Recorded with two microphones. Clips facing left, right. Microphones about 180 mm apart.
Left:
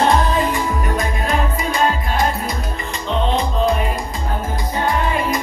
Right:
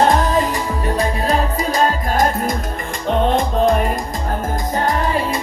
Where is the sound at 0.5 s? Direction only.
35° right (ahead or behind).